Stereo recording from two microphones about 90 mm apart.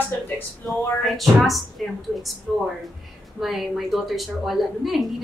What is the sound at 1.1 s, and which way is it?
A woman's voice, centre (ahead or behind).